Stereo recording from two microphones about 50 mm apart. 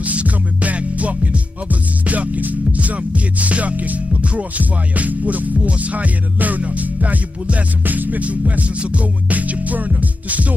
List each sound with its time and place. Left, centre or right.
0.0 s music: right